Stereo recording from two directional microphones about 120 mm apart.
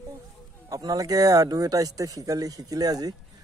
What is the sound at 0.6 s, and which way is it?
Speech, 30° right (ahead or behind).